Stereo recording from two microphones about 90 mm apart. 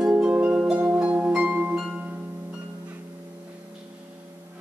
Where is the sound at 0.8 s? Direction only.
20° right (ahead or behind).